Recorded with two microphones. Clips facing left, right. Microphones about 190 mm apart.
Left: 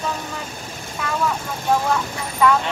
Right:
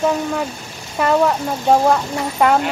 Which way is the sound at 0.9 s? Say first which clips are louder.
Right 8 dB; 55° right (ahead or behind).